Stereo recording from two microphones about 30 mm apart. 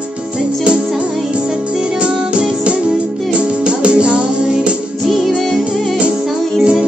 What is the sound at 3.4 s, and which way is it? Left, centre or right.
Music, right.